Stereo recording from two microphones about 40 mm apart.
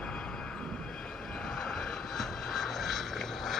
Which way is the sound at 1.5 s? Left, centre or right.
Centre.